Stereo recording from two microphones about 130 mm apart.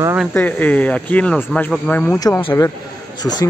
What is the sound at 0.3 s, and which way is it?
Speech, 15° left (ahead or behind).